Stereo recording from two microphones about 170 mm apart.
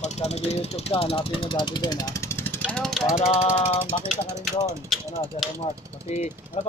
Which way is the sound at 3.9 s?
40° left (ahead or behind).